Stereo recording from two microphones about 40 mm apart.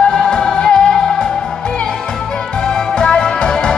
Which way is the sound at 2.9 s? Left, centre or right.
Centre.